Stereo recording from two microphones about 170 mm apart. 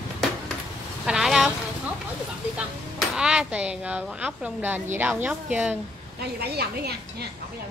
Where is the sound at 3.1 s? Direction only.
5° right (ahead or behind).